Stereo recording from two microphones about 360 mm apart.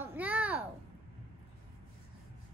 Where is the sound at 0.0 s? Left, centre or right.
Centre.